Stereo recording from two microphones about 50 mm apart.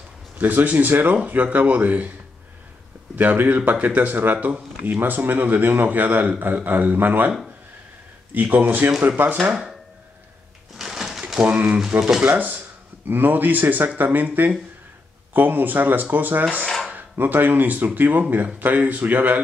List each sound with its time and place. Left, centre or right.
0.4 s speech: right
3.2 s speech: right
10.8 s a sound: centre
11.4 s speech: right